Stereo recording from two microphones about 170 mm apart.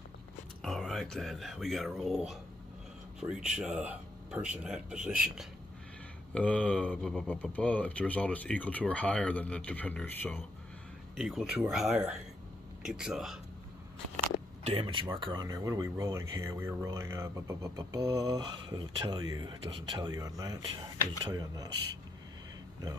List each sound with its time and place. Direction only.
0.6 s speech: centre (ahead or behind)
6.3 s speech: 10° left (ahead or behind)
11.1 s speech: centre (ahead or behind)
14.6 s speech: 35° right (ahead or behind)